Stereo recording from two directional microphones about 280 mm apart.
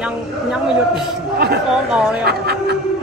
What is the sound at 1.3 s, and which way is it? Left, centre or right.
Speech, right.